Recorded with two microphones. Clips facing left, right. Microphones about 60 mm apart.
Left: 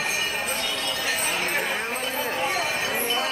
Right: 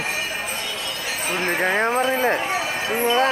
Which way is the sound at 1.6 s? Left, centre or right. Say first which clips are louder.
Right 7 dB; right.